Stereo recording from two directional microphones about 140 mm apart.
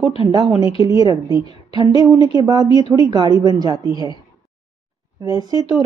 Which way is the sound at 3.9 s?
35° left (ahead or behind).